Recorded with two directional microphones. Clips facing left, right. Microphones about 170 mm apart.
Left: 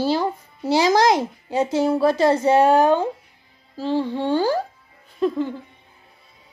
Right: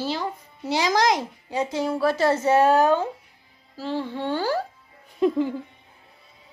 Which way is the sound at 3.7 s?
15° left (ahead or behind).